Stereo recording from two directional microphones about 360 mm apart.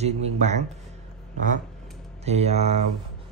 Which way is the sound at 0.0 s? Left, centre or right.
Centre.